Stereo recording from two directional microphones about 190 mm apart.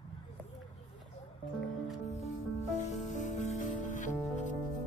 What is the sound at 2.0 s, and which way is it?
Music, 35° left (ahead or behind).